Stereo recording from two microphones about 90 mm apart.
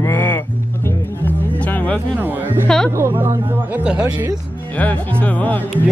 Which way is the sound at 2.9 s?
25° right (ahead or behind).